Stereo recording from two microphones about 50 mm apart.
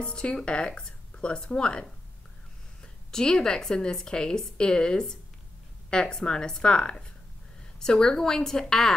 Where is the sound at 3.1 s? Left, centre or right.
Centre.